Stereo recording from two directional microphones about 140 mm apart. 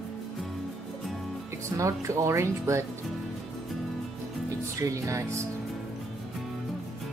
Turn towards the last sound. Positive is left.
turn(degrees=-20)  # may be behind; listen again after turning